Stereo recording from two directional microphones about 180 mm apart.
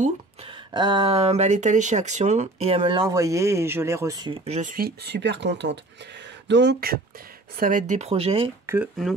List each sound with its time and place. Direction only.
0.7 s speech: 25° right (ahead or behind)
4.5 s speech: 45° right (ahead or behind); by 7.0 s 65° right (ahead or behind)
7.5 s speech: 50° right (ahead or behind); by 8.5 s 30° right (ahead or behind)
8.7 s speech: 15° right (ahead or behind)